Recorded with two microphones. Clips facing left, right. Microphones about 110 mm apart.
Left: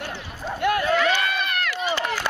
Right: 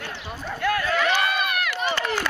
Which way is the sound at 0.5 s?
20° left (ahead or behind).